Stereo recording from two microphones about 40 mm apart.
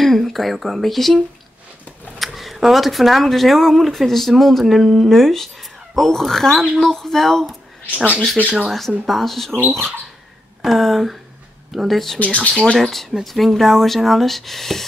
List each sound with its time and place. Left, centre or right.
0.0 s speech: centre
7.9 s speech: right
8.6 s speech: centre
10.6 s speech: centre
12.2 s speech: left
13.2 s speech: centre